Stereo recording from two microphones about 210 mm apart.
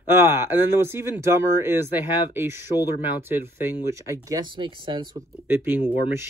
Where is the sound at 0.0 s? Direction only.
10° right (ahead or behind).